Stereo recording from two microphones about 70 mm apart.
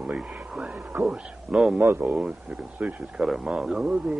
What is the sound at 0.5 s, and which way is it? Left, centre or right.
Speech, centre.